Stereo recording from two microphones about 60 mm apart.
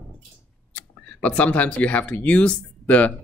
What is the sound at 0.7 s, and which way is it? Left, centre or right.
Speech, left.